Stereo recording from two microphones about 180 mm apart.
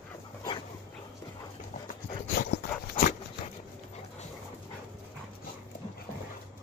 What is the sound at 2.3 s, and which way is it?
Dog, 55° left (ahead or behind).